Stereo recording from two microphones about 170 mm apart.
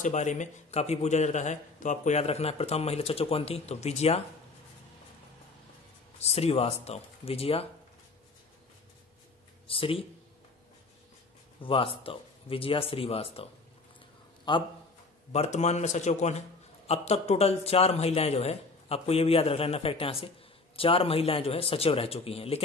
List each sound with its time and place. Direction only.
0.0 s a man's voice: 45° left (ahead or behind)
6.1 s a man's voice: 40° left (ahead or behind)
9.7 s a man's voice: 35° left (ahead or behind)
11.6 s a man's voice: 30° left (ahead or behind)
15.3 s a man's voice: 40° left (ahead or behind)